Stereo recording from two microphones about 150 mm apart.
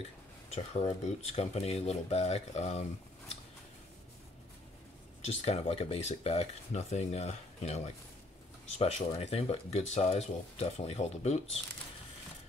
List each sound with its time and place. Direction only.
0.5 s speech: 45° left (ahead or behind)
5.2 s speech: 45° left (ahead or behind)